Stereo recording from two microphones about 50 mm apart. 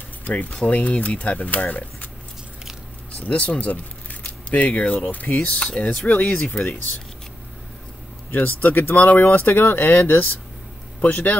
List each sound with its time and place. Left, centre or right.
0.2 s speech: left
3.1 s speech: left
8.3 s speech: left